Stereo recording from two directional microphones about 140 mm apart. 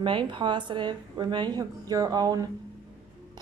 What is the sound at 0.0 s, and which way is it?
Speech, 35° right (ahead or behind).